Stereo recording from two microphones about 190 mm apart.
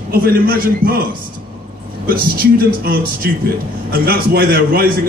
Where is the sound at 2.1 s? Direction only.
50° right (ahead or behind).